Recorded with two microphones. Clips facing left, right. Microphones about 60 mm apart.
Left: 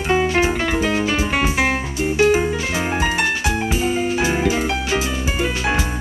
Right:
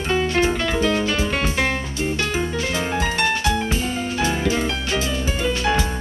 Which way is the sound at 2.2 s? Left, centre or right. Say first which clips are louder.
Left 11 dB; centre.